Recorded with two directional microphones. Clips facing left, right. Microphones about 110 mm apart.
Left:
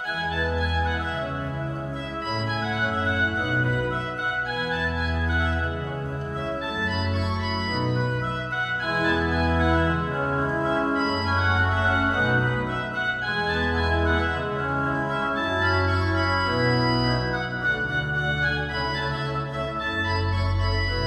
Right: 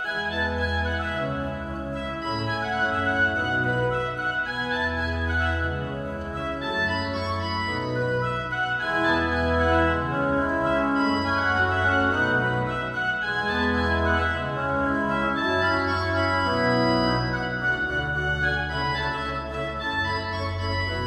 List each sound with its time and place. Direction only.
8.9 s organ: 25° right (ahead or behind)
9.6 s organ: 10° left (ahead or behind)